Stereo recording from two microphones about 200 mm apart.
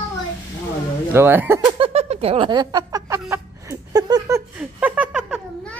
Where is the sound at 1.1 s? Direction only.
10° right (ahead or behind).